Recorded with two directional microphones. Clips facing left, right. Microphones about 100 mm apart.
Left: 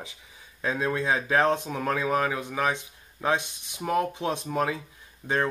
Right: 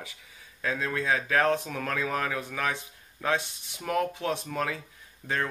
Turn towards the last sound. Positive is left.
turn(degrees=20)  # may be behind; listen again after turning